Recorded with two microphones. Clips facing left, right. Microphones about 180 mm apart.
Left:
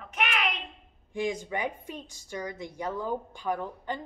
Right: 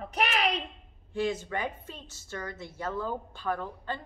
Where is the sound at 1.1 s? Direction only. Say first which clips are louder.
Even; 15° left (ahead or behind).